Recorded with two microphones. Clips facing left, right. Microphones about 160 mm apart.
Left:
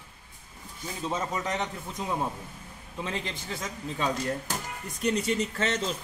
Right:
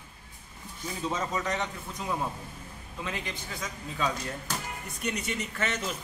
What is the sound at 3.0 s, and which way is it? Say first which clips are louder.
A man's voice: left 2 dB; 30° left (ahead or behind).